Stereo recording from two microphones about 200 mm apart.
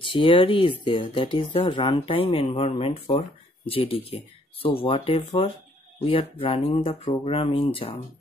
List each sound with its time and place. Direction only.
0.0 s speech: 25° left (ahead or behind)